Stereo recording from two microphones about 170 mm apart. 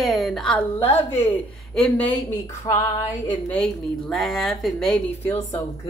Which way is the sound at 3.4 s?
5° left (ahead or behind).